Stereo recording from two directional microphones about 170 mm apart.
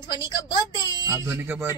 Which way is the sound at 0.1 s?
25° left (ahead or behind).